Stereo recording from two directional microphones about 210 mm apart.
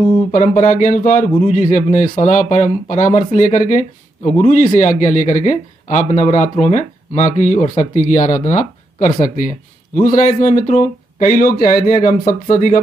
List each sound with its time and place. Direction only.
0.3 s a man's voice: 35° left (ahead or behind)